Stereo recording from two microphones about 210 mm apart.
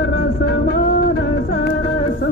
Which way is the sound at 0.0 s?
50° left (ahead or behind).